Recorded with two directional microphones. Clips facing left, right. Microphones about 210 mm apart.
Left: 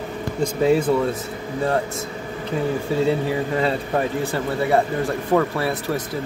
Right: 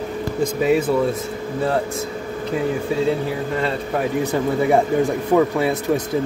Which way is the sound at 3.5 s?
Centre (ahead or behind).